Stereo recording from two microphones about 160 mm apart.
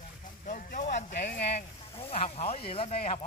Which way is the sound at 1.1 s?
90° left.